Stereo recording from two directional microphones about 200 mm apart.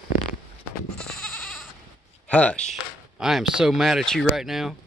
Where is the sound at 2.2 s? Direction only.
5° left (ahead or behind).